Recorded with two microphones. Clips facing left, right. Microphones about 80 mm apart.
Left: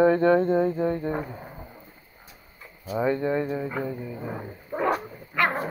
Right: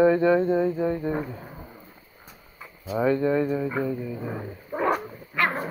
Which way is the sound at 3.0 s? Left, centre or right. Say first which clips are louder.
Right 3 dB; left.